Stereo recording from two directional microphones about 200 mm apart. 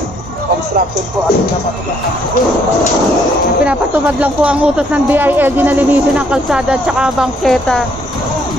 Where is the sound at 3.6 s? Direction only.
5° right (ahead or behind).